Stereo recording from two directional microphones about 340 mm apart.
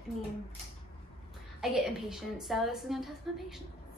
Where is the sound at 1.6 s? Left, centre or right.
Centre.